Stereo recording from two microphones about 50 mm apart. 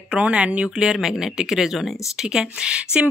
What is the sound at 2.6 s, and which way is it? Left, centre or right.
Speech, centre.